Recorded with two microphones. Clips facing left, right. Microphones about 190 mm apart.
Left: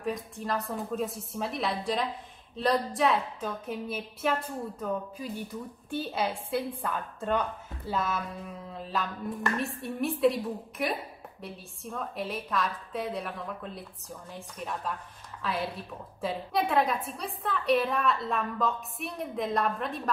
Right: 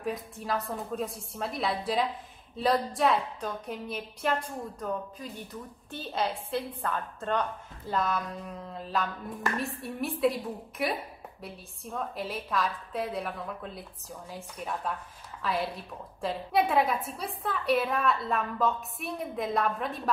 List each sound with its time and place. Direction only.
0.0 s a woman's voice: centre (ahead or behind)